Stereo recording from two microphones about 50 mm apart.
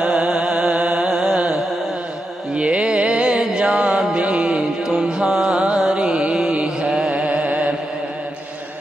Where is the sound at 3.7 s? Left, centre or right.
Centre.